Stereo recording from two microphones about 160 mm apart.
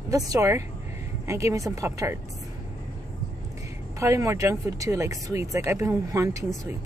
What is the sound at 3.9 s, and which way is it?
Speech, 20° right (ahead or behind).